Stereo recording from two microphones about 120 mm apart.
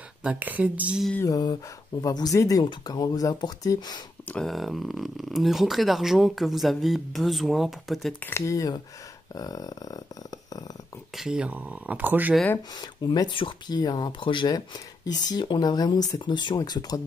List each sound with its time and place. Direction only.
0.2 s speech: 10° right (ahead or behind)
1.2 s speech: 35° left (ahead or behind)
4.3 s speech: 5° left (ahead or behind)
8.3 s speech: 25° left (ahead or behind)
11.1 s speech: 5° right (ahead or behind)
12.7 s speech: 35° left (ahead or behind)